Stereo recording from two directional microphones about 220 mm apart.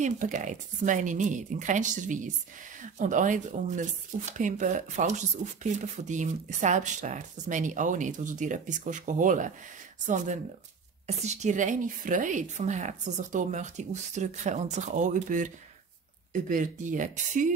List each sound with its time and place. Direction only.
0.0 s speech: 35° right (ahead or behind)